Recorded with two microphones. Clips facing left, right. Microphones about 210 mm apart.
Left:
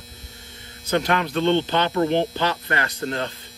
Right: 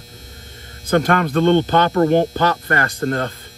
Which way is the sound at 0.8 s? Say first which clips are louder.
Right 5 dB; 50° right (ahead or behind).